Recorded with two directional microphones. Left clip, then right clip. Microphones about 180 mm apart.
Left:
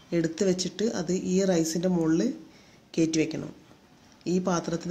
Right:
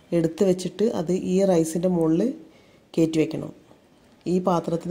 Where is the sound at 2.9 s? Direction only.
25° right (ahead or behind).